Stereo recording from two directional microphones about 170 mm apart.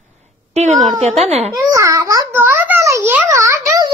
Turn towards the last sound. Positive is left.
turn(degrees=-20)  # may be behind; listen again after turning